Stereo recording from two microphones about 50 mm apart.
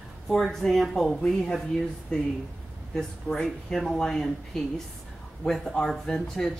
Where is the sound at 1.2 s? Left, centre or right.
Centre.